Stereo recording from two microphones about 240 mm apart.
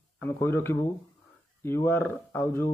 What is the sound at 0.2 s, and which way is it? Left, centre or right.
Speech, centre.